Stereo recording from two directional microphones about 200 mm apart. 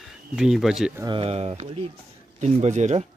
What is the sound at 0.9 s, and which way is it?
Speech, 25° right (ahead or behind).